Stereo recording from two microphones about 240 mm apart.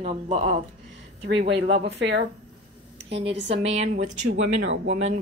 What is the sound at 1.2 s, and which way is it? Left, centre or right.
Speech, right.